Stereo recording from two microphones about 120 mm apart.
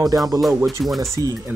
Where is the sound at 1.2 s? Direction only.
25° left (ahead or behind).